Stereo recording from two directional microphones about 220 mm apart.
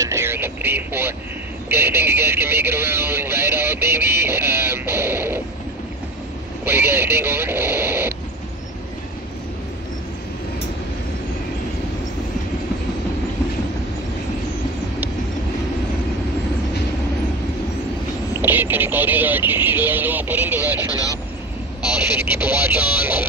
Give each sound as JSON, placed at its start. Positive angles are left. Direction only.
{"t": 0.0, "sound": "vehicle", "side_deg": -10}
{"t": 1.7, "sound": "speech", "side_deg": -10}
{"t": 6.6, "sound": "speech", "side_deg": -10}
{"t": 18.3, "sound": "speech", "side_deg": -10}
{"t": 20.9, "sound": "speech", "side_deg": 15}
{"t": 21.9, "sound": "speech", "side_deg": -10}